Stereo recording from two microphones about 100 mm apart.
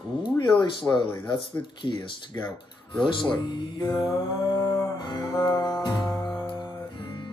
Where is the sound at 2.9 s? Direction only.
55° left (ahead or behind).